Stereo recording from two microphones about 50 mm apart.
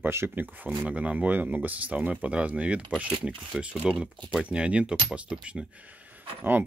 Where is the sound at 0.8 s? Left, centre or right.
Right.